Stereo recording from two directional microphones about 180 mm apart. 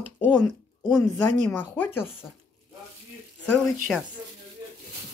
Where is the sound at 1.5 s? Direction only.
10° left (ahead or behind).